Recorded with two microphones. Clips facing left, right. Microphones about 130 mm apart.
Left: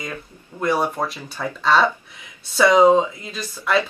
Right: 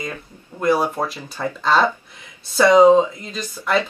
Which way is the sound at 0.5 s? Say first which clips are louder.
Right 2 dB; centre (ahead or behind).